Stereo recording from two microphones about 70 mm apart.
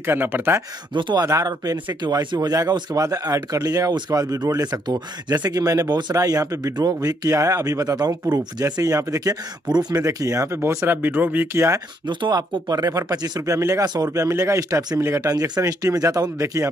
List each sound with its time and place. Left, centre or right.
0.0 s speech: right
1.2 s speech: right
10.0 s speech: right
11.0 s speech: right
11.5 s speech: right
12.1 s speech: right
13.5 s speech: right
15.2 s speech: right
15.6 s speech: right